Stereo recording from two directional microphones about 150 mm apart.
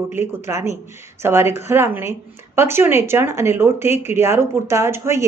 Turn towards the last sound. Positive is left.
turn(degrees=-20)  # may be behind; listen again after turning